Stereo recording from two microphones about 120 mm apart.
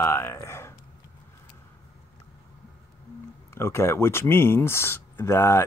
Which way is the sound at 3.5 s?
20° left (ahead or behind).